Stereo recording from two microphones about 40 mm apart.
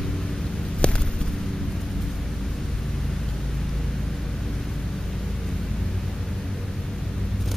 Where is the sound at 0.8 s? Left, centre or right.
Left.